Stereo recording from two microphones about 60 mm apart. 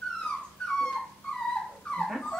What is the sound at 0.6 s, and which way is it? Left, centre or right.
Dog, centre.